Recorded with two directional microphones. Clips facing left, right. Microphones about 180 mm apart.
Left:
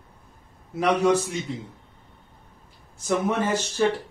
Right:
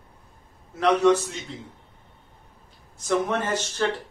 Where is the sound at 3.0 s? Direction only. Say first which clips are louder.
Left 1 dB; 10° left (ahead or behind).